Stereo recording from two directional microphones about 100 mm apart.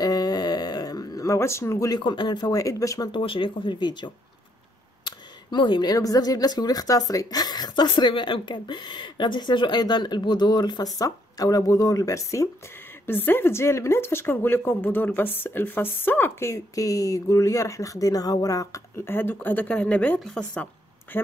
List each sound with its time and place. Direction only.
0.0 s a sound: 40° left (ahead or behind)
2.0 s speech: 50° left (ahead or behind); by 3.1 s 35° left (ahead or behind)
3.1 s speech: 60° left (ahead or behind)
5.0 s a sound: 50° left (ahead or behind)
5.9 s a woman's voice: 40° left (ahead or behind)
13.0 s speech: 20° left (ahead or behind)